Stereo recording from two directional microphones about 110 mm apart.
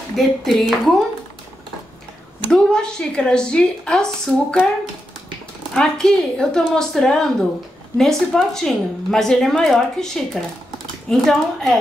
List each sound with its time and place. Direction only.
0.1 s a woman's voice: centre (ahead or behind)
2.5 s a woman's voice: 5° left (ahead or behind)
5.8 s a woman's voice: 5° left (ahead or behind)